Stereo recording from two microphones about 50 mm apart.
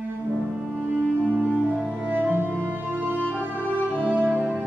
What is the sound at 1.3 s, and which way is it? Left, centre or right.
Music, right.